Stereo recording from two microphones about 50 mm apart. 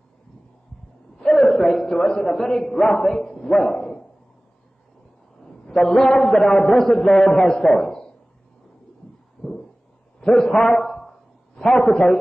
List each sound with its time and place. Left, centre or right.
1.2 s a man's voice: centre
5.4 s a man's voice: centre
10.2 s a man's voice: centre